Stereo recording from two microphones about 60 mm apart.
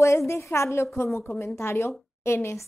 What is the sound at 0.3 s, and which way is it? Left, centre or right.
A woman's voice, left.